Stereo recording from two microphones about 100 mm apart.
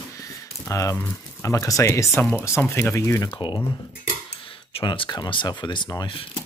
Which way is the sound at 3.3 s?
55° left (ahead or behind).